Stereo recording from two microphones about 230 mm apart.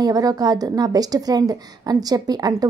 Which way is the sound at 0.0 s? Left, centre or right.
Centre.